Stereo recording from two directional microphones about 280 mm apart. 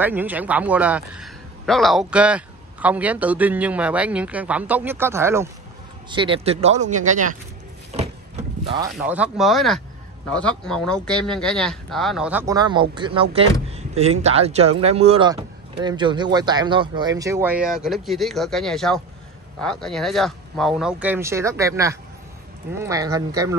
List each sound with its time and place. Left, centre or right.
0.0 s speech: centre; by 7.3 s right
8.9 s speech: centre